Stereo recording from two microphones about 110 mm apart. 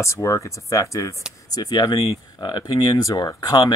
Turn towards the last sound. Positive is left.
turn(degrees=35)  # may be behind; listen again after turning